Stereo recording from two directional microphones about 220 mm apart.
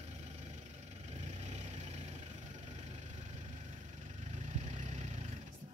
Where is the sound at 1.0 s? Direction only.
30° right (ahead or behind).